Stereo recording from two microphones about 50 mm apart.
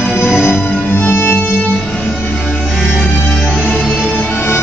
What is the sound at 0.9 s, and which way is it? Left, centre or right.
Music, left.